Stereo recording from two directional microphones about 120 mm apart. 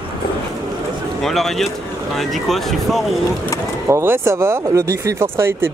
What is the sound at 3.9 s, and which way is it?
Speech, 20° right (ahead or behind).